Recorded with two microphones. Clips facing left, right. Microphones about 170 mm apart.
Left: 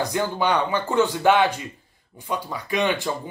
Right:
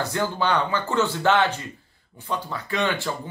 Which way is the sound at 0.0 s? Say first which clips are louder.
Left 2 dB; 15° left (ahead or behind).